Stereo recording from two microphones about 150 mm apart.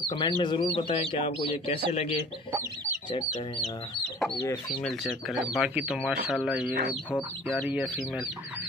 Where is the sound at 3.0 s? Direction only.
30° left (ahead or behind).